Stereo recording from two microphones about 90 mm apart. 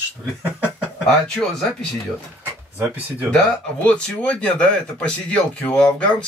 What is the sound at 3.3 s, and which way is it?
Speech, 15° left (ahead or behind).